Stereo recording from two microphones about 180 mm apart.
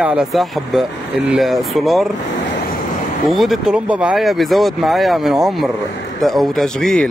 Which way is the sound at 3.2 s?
Centre (ahead or behind).